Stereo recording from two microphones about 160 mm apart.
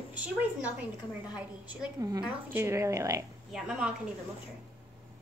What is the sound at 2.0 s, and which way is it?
A woman's voice, 20° right (ahead or behind).